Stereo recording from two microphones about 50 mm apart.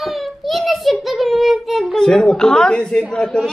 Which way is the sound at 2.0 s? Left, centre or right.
Centre.